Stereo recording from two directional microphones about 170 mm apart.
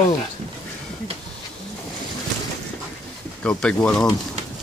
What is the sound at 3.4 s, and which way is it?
Speech, 5° left (ahead or behind).